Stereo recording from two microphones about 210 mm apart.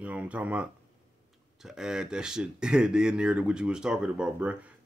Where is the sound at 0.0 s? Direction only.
5° right (ahead or behind).